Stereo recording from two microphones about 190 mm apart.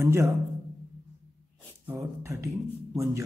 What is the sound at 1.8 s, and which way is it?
Speech, 15° right (ahead or behind).